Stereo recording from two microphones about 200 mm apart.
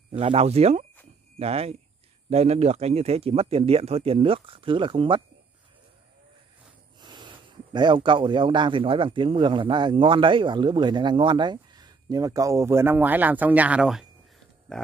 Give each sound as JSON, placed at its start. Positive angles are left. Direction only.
{"t": 0.2, "sound": "speech", "side_deg": -30}
{"t": 7.0, "sound": "speech", "side_deg": -20}